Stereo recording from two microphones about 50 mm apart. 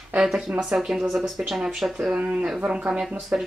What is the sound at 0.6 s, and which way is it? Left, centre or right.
Speech, centre.